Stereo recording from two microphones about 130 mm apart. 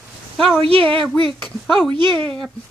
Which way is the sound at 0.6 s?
45° right (ahead or behind).